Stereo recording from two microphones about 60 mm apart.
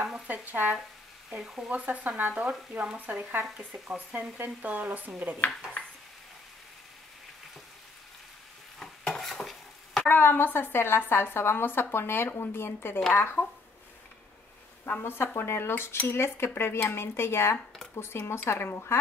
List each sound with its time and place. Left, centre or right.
0.3 s speech: right
1.3 s speech: centre
1.7 s speech: right
8.7 s stir: centre
10.0 s speech: left
15.0 s speech: left